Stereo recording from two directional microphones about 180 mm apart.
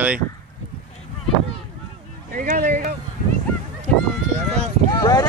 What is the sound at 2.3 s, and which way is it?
Speech, 50° right (ahead or behind).